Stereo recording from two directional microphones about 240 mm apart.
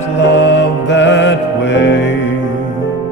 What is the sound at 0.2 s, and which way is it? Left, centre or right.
Music, left.